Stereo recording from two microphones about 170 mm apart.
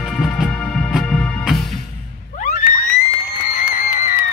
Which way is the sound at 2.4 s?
50° left (ahead or behind).